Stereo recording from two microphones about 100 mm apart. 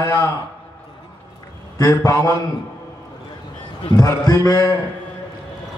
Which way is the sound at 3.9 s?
35° left (ahead or behind).